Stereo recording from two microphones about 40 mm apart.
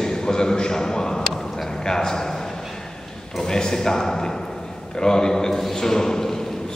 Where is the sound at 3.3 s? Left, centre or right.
Centre.